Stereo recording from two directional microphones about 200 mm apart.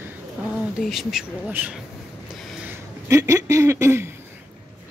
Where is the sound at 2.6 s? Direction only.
15° right (ahead or behind).